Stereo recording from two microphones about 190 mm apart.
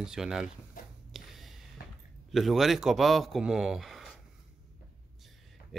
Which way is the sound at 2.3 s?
Centre (ahead or behind).